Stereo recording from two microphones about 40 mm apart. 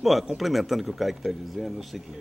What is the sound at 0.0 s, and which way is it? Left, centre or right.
A man's voice, centre.